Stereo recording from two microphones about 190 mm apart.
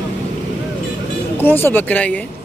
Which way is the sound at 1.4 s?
10° left (ahead or behind).